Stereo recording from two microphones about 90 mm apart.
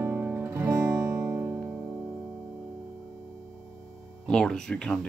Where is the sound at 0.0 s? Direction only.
30° right (ahead or behind).